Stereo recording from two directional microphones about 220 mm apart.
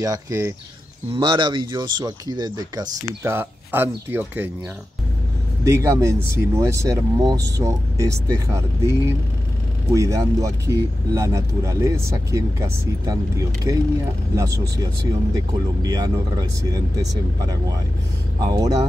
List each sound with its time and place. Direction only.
0.0 s speech: 15° right (ahead or behind)
5.6 s speech: 15° right (ahead or behind)
9.9 s speech: 15° right (ahead or behind)